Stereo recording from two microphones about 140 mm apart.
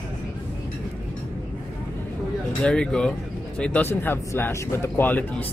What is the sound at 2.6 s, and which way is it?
Speech, 5° left (ahead or behind).